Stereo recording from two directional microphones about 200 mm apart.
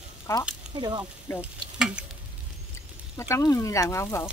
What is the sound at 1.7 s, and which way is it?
Tick-tock, 5° right (ahead or behind).